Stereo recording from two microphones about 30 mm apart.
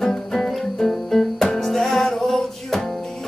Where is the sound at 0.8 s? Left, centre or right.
Left.